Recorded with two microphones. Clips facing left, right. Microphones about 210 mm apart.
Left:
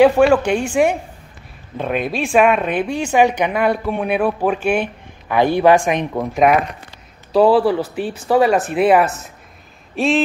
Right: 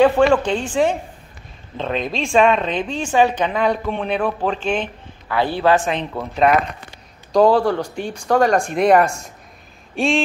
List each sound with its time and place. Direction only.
0.0 s speech: 10° left (ahead or behind)